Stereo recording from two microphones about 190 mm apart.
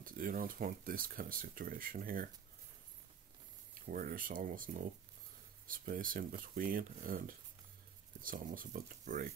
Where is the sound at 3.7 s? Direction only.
45° right (ahead or behind).